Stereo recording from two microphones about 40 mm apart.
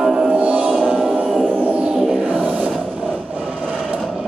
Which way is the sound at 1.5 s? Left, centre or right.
Right.